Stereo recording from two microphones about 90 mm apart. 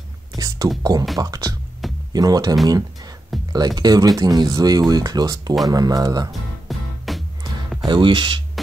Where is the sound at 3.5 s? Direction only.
45° right (ahead or behind).